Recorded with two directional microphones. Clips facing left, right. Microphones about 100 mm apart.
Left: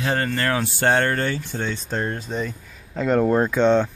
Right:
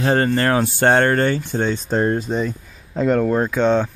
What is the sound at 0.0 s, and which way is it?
Speech, 35° right (ahead or behind).